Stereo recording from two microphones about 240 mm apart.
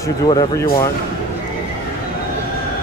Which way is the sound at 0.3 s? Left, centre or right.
Centre.